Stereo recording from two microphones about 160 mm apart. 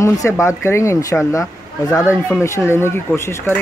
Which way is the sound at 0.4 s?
20° left (ahead or behind).